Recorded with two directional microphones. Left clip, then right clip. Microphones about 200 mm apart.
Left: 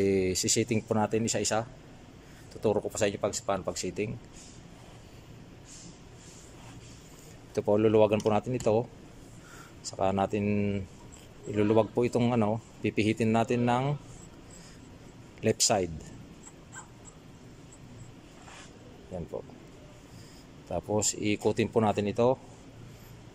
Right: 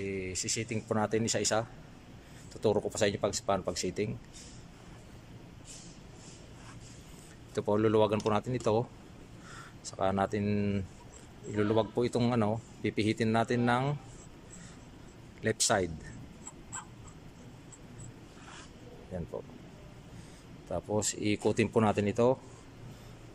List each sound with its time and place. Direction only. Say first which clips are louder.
0.0 s a sound: left 10 dB; 25° left (ahead or behind)
0.8 s speech: left 2 dB; 5° left (ahead or behind)
7.5 s speech: left 4 dB; 5° left (ahead or behind)
9.8 s speech: left 2 dB; 5° left (ahead or behind)
15.4 s speech: left 3 dB; 5° left (ahead or behind)
19.1 s speech: left 2 dB; 5° left (ahead or behind)
20.7 s speech: left 3 dB; centre (ahead or behind)